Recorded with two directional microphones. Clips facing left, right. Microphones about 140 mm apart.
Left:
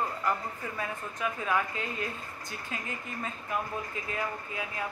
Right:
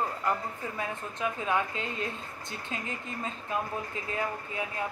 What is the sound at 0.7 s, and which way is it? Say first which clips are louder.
A woman's voice: right 1 dB; 25° right (ahead or behind).